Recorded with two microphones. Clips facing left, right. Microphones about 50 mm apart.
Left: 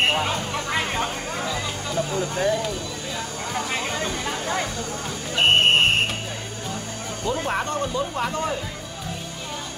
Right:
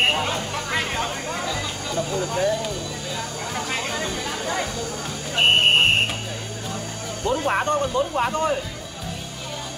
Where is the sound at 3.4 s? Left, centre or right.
Centre.